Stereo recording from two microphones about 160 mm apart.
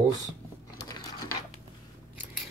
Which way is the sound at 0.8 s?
20° left (ahead or behind).